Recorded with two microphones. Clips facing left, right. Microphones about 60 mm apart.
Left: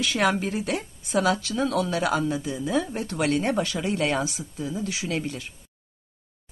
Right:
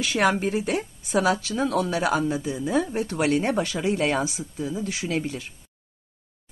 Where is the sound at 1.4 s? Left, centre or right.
Centre.